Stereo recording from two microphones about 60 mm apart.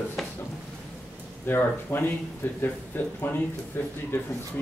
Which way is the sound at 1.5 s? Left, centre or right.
Left.